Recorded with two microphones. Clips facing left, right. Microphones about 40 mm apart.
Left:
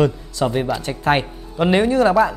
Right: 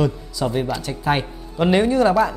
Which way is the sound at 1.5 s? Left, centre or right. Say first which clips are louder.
Left 1 dB; centre.